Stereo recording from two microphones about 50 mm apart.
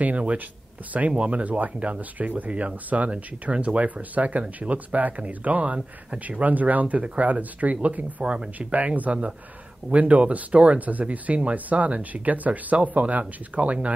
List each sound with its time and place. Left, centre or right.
0.0 s speech: right